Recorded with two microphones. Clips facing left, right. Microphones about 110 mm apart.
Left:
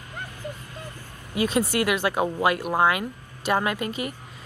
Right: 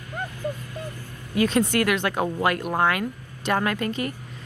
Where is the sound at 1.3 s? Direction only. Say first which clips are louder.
Right 2 dB; 20° left (ahead or behind).